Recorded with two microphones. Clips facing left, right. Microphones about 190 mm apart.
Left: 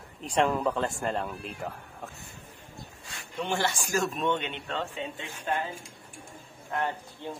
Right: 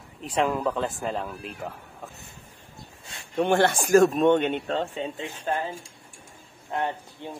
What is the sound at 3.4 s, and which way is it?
A man's voice, 55° right (ahead or behind).